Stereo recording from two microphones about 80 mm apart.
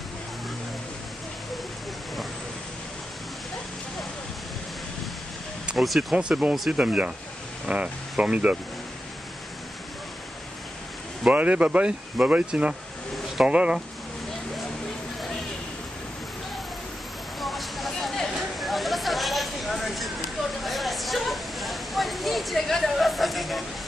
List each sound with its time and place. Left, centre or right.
5.8 s speech: centre
6.1 s speech: centre
11.2 s speech: centre
17.4 s a sound: centre